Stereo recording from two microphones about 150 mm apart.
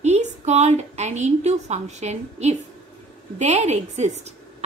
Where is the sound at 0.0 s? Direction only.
50° right (ahead or behind).